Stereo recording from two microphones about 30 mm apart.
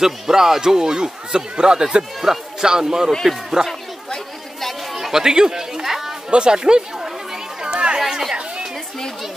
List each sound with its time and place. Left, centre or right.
0.0 s a man's voice: centre; by 2.0 s right
2.2 s a man's voice: centre
4.9 s chatter: centre
6.3 s a man's voice: right
7.6 s chatter: right
8.0 s chatter: centre